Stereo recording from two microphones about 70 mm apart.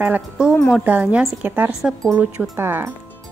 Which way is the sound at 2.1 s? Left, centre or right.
Right.